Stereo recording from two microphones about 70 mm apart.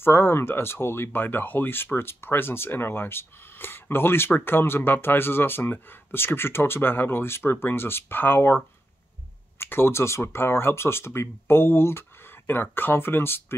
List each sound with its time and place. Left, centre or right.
0.0 s speech: left
9.6 s speech: left